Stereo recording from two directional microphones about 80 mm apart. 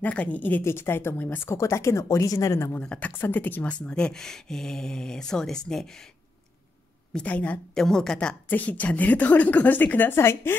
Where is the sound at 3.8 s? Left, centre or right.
Centre.